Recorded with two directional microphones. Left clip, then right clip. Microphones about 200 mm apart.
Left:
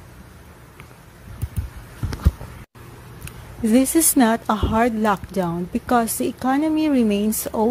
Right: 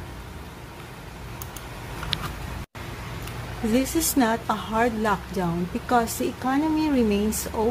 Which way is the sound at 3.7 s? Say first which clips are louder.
Left 6 dB; 45° left (ahead or behind).